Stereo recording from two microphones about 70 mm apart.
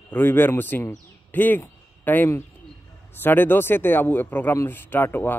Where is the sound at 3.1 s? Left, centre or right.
Left.